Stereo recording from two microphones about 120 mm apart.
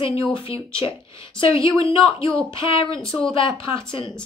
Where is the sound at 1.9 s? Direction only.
50° left (ahead or behind).